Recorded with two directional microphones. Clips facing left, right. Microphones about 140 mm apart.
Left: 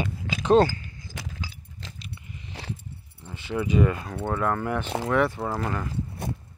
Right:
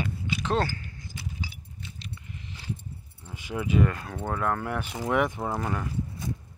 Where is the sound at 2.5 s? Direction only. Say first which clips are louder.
Left 1 dB; 75° left (ahead or behind).